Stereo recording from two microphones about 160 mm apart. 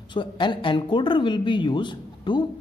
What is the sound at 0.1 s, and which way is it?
A man's voice, 30° left (ahead or behind).